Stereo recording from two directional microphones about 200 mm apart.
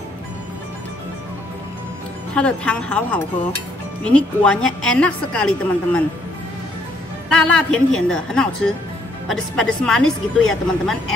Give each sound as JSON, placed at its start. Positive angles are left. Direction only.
{"t": 2.3, "sound": "a woman's voice", "side_deg": 5}
{"t": 7.2, "sound": "a woman's voice", "side_deg": 5}